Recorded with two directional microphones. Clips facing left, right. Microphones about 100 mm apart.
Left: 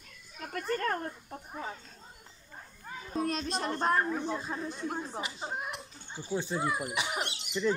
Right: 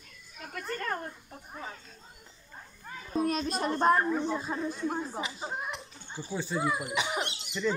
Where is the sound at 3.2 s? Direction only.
5° right (ahead or behind).